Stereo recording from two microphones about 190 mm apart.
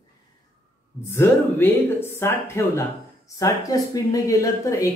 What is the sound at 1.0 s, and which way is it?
Speech, 10° left (ahead or behind).